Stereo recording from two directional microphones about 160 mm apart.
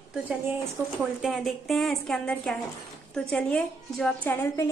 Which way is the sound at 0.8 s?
15° right (ahead or behind).